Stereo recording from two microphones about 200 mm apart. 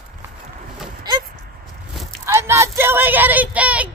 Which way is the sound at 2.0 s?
15° right (ahead or behind).